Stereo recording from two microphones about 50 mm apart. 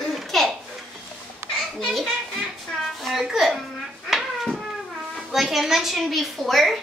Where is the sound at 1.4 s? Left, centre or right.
Right.